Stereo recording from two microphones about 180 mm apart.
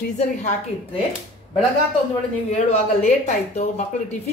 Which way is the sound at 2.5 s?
35° left (ahead or behind).